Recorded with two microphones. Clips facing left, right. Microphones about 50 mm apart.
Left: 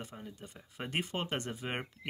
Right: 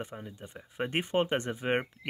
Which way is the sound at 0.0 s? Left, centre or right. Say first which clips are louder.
Right 5 dB; centre.